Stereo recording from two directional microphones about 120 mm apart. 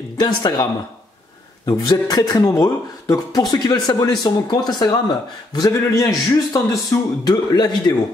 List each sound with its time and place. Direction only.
0.2 s speech: 35° left (ahead or behind)
1.7 s a man's voice: 35° left (ahead or behind)